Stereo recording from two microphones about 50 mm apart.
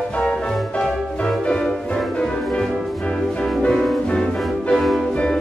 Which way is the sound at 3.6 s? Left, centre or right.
Centre.